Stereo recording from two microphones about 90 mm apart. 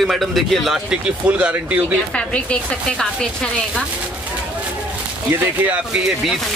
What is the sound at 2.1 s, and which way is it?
Speech, 10° left (ahead or behind).